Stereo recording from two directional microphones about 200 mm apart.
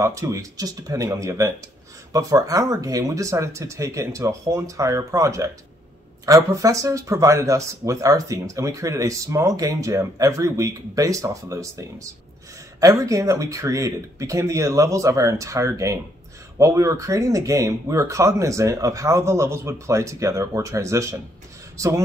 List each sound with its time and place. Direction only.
0.0 s speech: 15° right (ahead or behind)
12.8 s speech: 15° right (ahead or behind)